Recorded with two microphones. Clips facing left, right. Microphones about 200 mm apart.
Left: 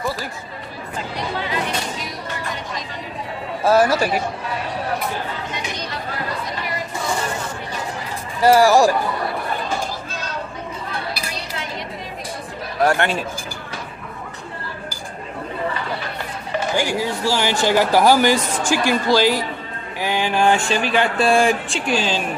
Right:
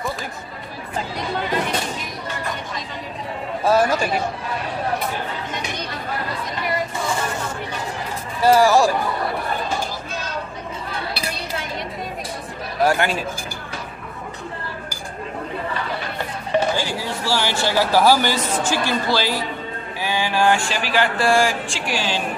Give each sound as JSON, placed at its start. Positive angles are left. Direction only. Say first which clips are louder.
{"t": 3.6, "sound": "speech", "louder": "left 2 dB", "side_deg": 10}
{"t": 8.4, "sound": "speech", "louder": "left 2 dB", "side_deg": 10}
{"t": 12.8, "sound": "speech", "louder": "left 1 dB", "side_deg": 0}
{"t": 16.7, "sound": "speech", "louder": "left 4 dB", "side_deg": 15}
{"t": 20.0, "sound": "a sound", "louder": "left 2 dB", "side_deg": 15}